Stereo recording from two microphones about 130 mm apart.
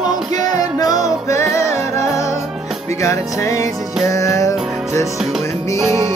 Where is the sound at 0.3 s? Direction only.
30° left (ahead or behind).